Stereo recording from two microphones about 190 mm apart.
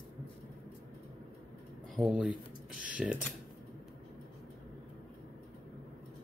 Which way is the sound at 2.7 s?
45° right (ahead or behind).